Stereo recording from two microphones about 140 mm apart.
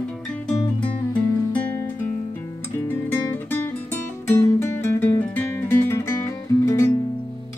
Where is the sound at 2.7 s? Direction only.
15° left (ahead or behind).